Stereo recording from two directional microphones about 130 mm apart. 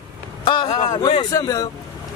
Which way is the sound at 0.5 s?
35° left (ahead or behind).